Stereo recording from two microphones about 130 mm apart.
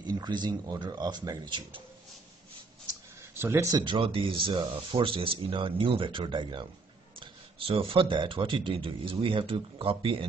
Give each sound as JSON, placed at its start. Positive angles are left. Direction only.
{"t": 0.0, "sound": "speech", "side_deg": -35}
{"t": 3.2, "sound": "a sound", "side_deg": -20}
{"t": 3.8, "sound": "speech", "side_deg": -40}